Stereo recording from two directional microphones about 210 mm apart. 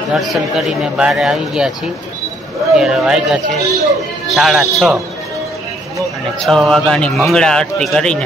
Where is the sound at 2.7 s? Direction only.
5° right (ahead or behind).